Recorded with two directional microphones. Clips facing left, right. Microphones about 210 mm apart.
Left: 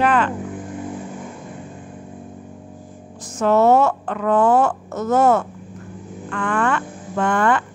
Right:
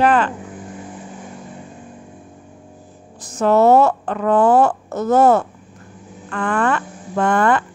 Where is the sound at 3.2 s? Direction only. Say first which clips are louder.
Right 2 dB; 35° right (ahead or behind).